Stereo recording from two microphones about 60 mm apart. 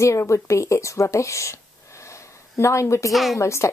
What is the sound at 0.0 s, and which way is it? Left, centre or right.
Speech, left.